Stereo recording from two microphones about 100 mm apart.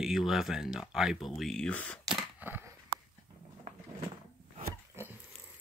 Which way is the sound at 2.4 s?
20° right (ahead or behind).